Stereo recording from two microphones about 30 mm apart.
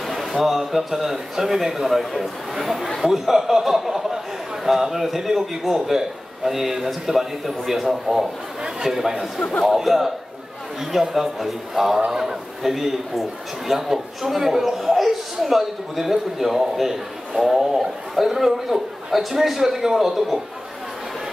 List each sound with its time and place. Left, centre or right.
0.0 s a man's voice: centre
12.7 s a man's voice: centre